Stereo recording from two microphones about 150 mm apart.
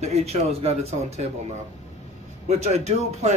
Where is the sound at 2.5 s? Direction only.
50° right (ahead or behind).